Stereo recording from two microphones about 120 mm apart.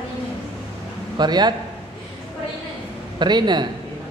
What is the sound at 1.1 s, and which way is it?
Speech, 35° right (ahead or behind).